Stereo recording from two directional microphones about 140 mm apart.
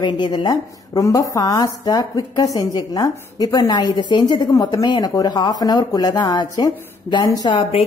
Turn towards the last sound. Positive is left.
turn(degrees=30)  # may be behind; listen again after turning